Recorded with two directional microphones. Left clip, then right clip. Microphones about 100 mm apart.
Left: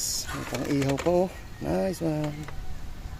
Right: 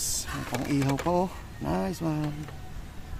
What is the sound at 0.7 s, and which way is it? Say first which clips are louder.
Speech: left 3 dB; 70° right (ahead or behind).